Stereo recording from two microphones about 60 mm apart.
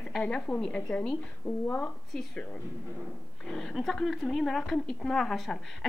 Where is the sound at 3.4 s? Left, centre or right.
Centre.